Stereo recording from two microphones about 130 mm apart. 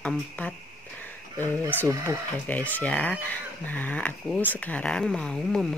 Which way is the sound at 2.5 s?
10° left (ahead or behind).